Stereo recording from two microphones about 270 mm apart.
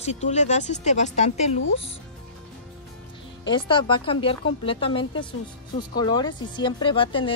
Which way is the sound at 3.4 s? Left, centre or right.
Centre.